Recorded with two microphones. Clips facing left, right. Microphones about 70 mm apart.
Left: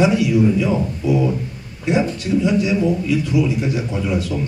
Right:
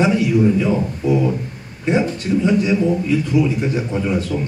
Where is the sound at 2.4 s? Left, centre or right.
Right.